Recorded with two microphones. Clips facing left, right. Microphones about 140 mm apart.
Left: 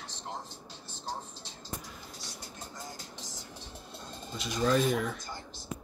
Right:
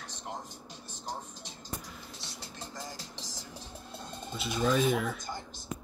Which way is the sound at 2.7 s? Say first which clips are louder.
Right 1 dB; 90° right.